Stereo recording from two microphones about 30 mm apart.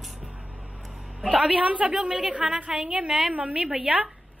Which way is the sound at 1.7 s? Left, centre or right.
Right.